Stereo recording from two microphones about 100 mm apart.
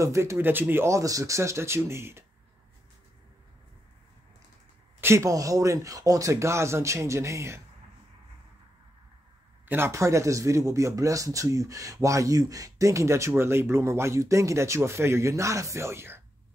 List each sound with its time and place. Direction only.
0.0 s speech: 30° right (ahead or behind)
5.0 s speech: 30° right (ahead or behind)
9.7 s speech: 25° right (ahead or behind)